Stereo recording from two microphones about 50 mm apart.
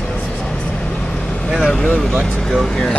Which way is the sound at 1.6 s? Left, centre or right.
Left.